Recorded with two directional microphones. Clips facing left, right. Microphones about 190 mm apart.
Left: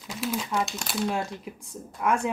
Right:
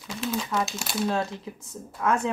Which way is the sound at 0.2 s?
10° left (ahead or behind).